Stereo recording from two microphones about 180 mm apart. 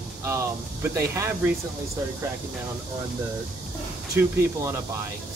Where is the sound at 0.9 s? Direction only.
15° right (ahead or behind).